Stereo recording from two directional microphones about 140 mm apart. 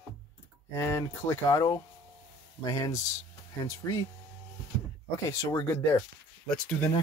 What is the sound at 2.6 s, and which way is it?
Speech, 25° left (ahead or behind).